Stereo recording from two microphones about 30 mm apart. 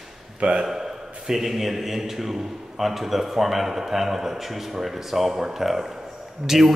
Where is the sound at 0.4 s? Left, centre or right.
Right.